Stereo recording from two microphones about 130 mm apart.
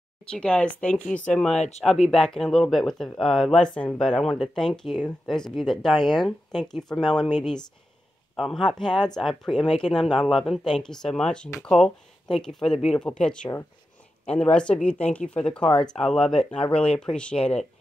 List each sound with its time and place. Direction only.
0.2 s speech: 5° left (ahead or behind)
1.5 s speech: 60° left (ahead or behind)
2.0 s speech: 5° left (ahead or behind)